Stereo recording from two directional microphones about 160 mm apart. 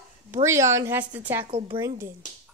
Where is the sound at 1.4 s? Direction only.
35° right (ahead or behind).